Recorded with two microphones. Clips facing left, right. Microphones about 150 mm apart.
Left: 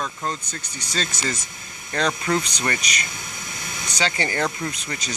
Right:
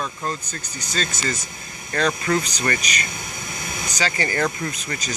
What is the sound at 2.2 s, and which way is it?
Speech, 10° left (ahead or behind).